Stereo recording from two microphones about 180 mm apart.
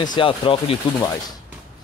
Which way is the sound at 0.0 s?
25° left (ahead or behind).